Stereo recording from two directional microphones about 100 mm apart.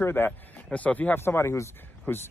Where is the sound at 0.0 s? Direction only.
20° left (ahead or behind).